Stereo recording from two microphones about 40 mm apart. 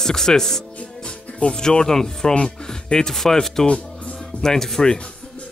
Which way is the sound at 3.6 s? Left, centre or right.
Left.